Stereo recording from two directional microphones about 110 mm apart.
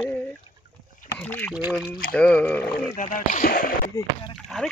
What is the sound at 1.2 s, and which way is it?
Rowboat, 15° left (ahead or behind).